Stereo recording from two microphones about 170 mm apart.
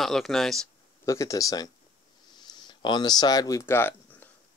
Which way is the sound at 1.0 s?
20° left (ahead or behind).